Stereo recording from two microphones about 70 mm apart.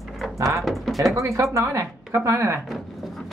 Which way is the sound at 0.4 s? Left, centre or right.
Right.